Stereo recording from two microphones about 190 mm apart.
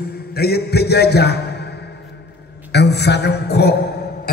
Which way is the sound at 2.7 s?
60° left (ahead or behind).